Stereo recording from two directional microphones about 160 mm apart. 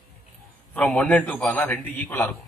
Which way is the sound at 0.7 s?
5° left (ahead or behind).